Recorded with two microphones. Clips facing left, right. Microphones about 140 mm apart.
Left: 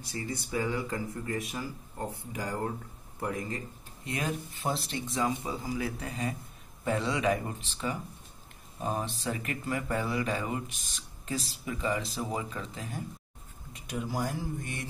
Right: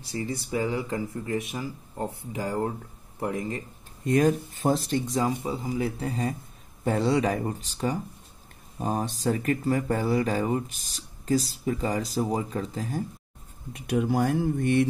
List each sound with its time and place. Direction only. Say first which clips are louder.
0.1 s speech: right 5 dB; 25° right (ahead or behind)
4.0 s speech: right 12 dB; 45° right (ahead or behind)
5.4 s speech: right 5 dB; 25° right (ahead or behind)
13.7 s speech: right 9 dB; 60° right (ahead or behind)